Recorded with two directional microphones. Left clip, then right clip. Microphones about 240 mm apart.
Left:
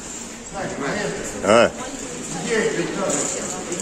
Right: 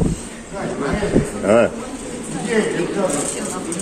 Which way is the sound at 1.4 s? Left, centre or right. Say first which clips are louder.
Even; centre.